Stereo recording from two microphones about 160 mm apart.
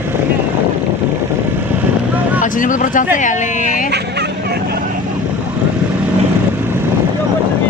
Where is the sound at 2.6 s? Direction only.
55° left (ahead or behind).